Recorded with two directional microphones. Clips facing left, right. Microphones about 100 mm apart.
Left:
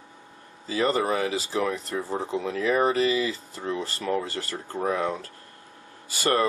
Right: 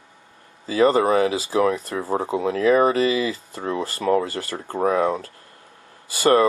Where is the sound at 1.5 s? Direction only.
90° right.